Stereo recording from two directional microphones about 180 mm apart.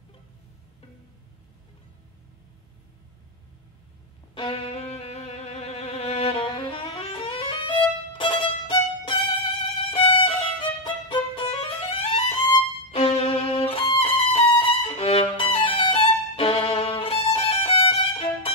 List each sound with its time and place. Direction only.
4.4 s music: 35° left (ahead or behind)
9.8 s violin: 30° left (ahead or behind)
12.9 s music: 30° left (ahead or behind)